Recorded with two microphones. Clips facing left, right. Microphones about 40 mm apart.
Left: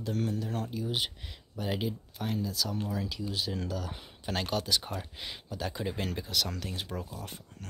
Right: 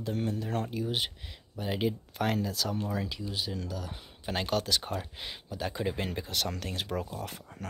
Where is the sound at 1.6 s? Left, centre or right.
Centre.